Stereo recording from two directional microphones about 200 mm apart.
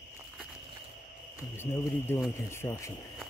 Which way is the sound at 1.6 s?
10° left (ahead or behind).